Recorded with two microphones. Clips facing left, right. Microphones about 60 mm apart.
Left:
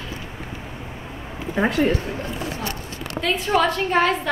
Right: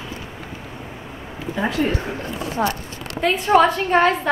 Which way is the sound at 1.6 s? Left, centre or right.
Left.